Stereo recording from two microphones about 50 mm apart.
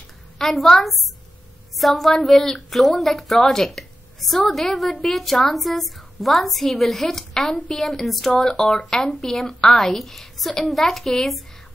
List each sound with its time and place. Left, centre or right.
0.4 s a woman's voice: centre